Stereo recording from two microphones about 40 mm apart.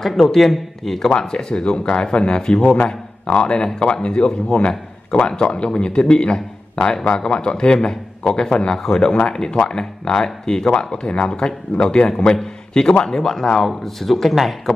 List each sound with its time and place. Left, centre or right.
0.0 s speech: centre
1.1 s a man's voice: left; by 14.5 s centre